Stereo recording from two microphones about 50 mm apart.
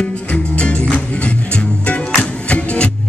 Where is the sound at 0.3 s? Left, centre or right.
Left.